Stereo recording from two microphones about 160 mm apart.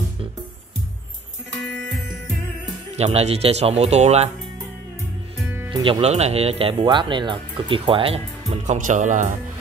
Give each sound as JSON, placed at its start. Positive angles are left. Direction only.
{"t": 1.6, "sound": "music", "side_deg": -90}
{"t": 3.0, "sound": "speech", "side_deg": -40}
{"t": 5.7, "sound": "speech", "side_deg": -35}